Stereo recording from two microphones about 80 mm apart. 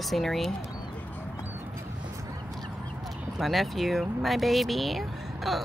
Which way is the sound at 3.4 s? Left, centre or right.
Centre.